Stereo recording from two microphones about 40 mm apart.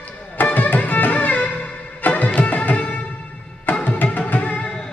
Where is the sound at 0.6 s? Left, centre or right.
Left.